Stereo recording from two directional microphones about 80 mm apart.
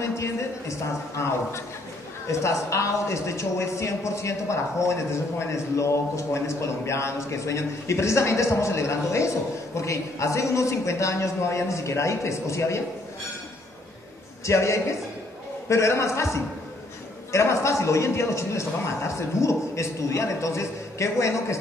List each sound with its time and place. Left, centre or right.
0.0 s a woman's voice: left
14.4 s a man's voice: left